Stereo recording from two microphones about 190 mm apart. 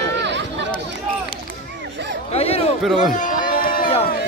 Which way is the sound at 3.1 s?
45° left (ahead or behind).